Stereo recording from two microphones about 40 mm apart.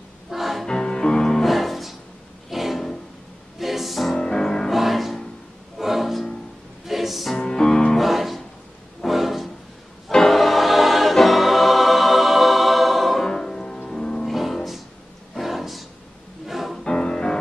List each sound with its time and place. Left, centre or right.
0.3 s music: centre
0.7 s music: centre
1.4 s music: centre
4.1 s music: centre
4.6 s music: centre
7.3 s music: centre
8.0 s music: centre
10.1 s choir: centre
13.3 s music: centre
14.2 s music: centre
15.3 s a sound: centre
16.4 s music: centre
16.8 s music: centre